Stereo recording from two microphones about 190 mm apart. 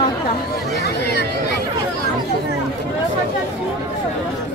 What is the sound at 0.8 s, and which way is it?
Speech, 65° left (ahead or behind).